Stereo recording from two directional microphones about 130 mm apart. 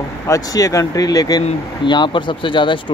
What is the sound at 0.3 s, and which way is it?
Speech, 30° left (ahead or behind).